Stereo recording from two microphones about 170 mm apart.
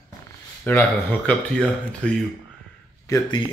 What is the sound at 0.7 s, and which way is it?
Speech, 10° left (ahead or behind).